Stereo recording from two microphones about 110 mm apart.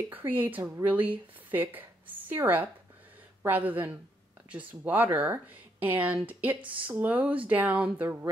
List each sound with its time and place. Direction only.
0.1 s a woman's voice: 15° right (ahead or behind)